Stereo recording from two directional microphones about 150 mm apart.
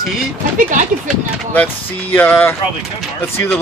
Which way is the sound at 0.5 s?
60° right (ahead or behind).